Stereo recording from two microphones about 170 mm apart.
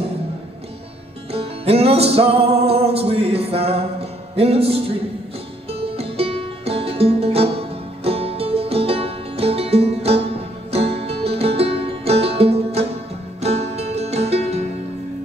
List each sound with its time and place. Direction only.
1.3 s music: 35° right (ahead or behind)
5.9 s music: 35° right (ahead or behind)